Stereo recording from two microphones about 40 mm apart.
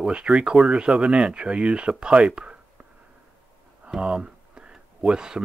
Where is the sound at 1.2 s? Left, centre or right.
Right.